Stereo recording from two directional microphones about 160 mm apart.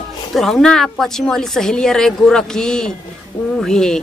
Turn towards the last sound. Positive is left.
turn(degrees=5)  # may be behind; listen again after turning